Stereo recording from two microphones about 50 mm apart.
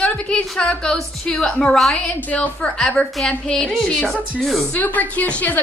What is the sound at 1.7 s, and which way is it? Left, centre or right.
Speech, centre.